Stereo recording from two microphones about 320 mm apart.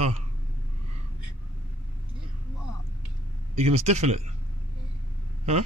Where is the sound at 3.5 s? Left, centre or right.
Centre.